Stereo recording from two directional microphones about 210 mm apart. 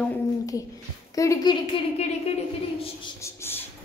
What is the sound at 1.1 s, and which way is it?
Speech, 15° left (ahead or behind).